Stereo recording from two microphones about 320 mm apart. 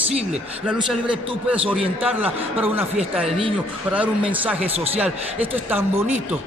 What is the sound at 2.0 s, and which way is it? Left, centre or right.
Speech, centre.